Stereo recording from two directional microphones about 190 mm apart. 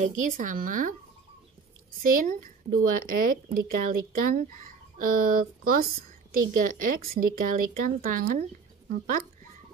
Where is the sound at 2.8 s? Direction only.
50° right (ahead or behind).